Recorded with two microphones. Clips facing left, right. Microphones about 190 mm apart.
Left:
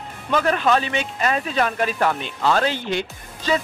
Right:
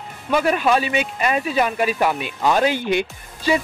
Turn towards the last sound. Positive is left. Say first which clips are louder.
# right 2 dB
turn(degrees=-15)  # may be behind; listen again after turning